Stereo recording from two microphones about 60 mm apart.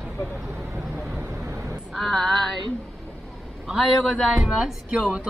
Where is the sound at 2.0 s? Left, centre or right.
Centre.